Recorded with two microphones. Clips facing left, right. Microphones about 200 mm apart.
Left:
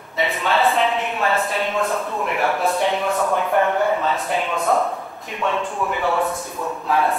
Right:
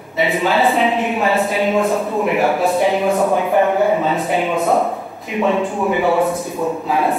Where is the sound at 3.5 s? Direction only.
15° right (ahead or behind).